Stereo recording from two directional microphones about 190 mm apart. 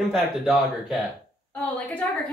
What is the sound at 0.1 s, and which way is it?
A woman's voice, centre (ahead or behind).